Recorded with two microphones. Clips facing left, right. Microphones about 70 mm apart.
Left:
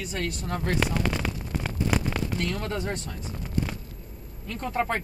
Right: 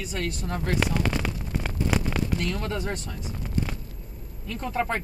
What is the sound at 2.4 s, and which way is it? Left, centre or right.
Speech, left.